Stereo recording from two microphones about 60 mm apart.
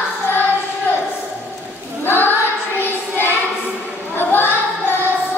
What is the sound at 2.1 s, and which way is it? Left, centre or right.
Child singing, left.